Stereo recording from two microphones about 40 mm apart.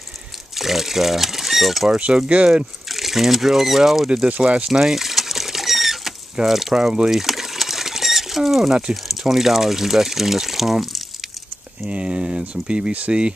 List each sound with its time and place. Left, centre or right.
0.6 s speech: centre
2.1 s speech: right
2.9 s speech: centre
4.4 s speech: right
4.6 s rodents: centre
6.4 s speech: centre
7.1 s pigeon: centre
9.0 s speech: centre
11.8 s speech: right